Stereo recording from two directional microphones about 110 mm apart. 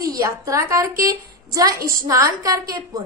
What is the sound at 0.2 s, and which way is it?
A woman's voice, 30° right (ahead or behind).